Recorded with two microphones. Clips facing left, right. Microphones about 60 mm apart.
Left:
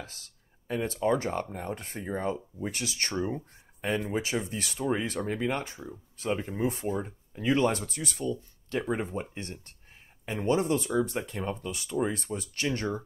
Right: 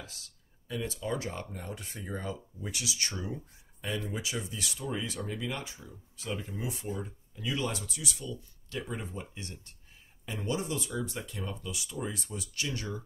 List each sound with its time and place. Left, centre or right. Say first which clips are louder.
0.7 s speech: left 7 dB; left